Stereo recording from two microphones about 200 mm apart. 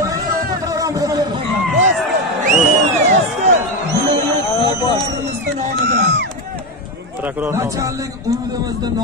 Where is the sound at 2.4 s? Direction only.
40° right (ahead or behind).